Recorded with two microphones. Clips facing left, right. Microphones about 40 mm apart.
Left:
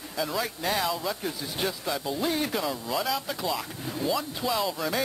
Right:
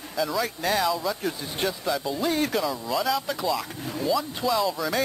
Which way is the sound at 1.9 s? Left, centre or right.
Centre.